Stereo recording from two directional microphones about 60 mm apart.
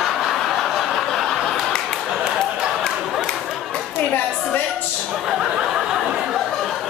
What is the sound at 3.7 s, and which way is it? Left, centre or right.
Chatter, left.